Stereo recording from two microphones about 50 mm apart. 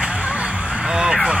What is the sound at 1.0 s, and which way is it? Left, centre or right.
Vehicle, centre.